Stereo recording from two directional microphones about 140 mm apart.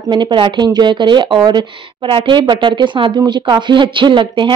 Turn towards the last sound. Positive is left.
turn(degrees=-35)  # may be behind; listen again after turning